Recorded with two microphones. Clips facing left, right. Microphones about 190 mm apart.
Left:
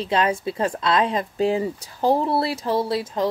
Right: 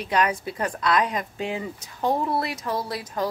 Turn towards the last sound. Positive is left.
turn(degrees=25)  # may be behind; listen again after turning